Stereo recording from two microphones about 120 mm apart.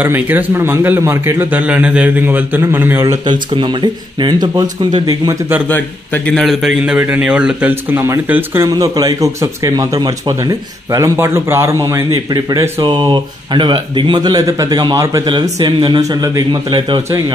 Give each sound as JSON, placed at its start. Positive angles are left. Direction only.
{"t": 0.0, "sound": "a man's voice", "side_deg": -15}
{"t": 3.3, "sound": "speech", "side_deg": -40}
{"t": 5.7, "sound": "a man's voice", "side_deg": 15}
{"t": 6.4, "sound": "a man's voice", "side_deg": 0}
{"t": 6.8, "sound": "a man's voice", "side_deg": -10}
{"t": 8.6, "sound": "speech", "side_deg": -30}